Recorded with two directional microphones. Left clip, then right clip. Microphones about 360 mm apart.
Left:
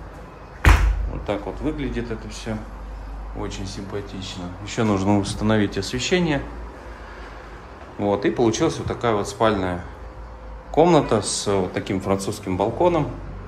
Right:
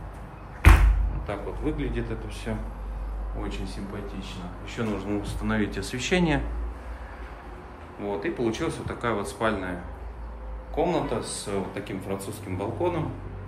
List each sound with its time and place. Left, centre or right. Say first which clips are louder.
1.2 s a man's voice: left 5 dB; centre
8.0 s speech: left 9 dB; centre
10.7 s speech: left 10 dB; centre